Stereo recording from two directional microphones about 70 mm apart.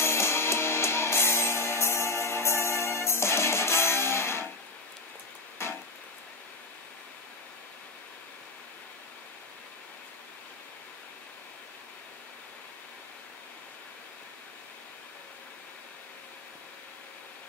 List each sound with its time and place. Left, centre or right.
0.0 s music: left